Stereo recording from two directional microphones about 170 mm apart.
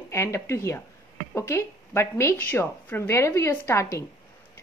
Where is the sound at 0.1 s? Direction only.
15° left (ahead or behind).